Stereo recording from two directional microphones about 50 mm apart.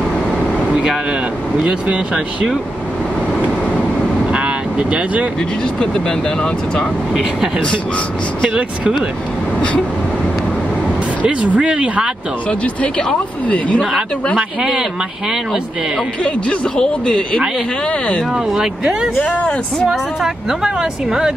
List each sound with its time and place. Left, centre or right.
1.6 s speech: right
4.3 s vehicle: right
5.8 s speech: centre
7.2 s speech: centre
11.2 s speech: right
12.4 s speech: left
16.3 s speech: centre
18.3 s speech: centre
19.2 s speech: left
19.9 s speech: centre